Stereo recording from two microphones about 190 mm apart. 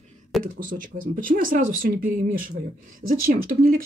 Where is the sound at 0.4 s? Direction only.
45° right (ahead or behind).